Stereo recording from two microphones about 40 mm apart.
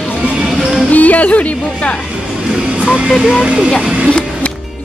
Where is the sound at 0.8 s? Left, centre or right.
Left.